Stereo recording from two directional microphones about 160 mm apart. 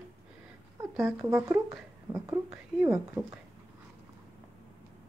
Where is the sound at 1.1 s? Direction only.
20° right (ahead or behind).